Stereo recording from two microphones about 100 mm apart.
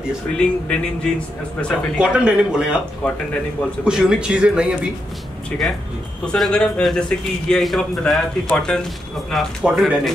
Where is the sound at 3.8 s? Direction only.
5° right (ahead or behind).